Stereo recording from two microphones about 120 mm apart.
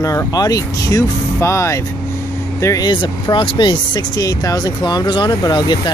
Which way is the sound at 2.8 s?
40° left (ahead or behind).